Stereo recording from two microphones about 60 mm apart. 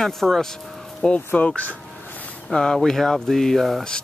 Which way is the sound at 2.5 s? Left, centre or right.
Centre.